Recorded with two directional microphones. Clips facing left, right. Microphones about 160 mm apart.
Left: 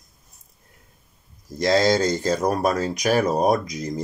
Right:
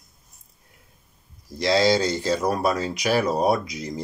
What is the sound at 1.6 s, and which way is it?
Speech, 45° left (ahead or behind).